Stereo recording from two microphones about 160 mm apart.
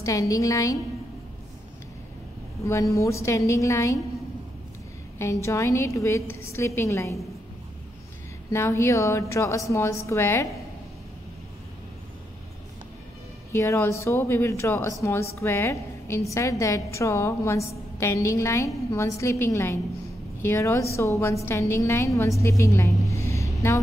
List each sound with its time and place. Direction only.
0.0 s a woman's voice: 20° left (ahead or behind)
2.6 s a woman's voice: 20° left (ahead or behind)
5.2 s a woman's voice: 20° left (ahead or behind)
8.5 s a woman's voice: 15° left (ahead or behind)
13.5 s a woman's voice: 15° left (ahead or behind)